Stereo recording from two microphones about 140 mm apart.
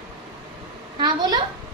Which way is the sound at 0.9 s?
30° right (ahead or behind).